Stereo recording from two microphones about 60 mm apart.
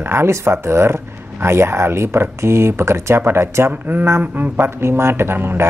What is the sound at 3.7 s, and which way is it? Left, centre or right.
Speech, right.